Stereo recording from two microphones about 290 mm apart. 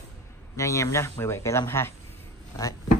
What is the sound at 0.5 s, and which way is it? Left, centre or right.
Speech, centre.